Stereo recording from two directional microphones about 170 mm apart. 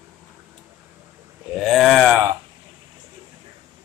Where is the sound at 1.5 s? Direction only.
Centre (ahead or behind).